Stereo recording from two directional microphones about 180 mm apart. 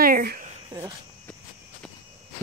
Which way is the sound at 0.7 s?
25° right (ahead or behind).